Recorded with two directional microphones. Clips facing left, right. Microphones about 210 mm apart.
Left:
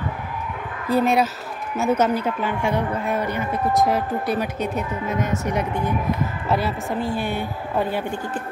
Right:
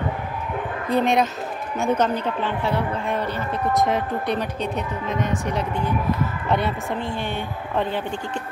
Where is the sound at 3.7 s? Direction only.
Centre (ahead or behind).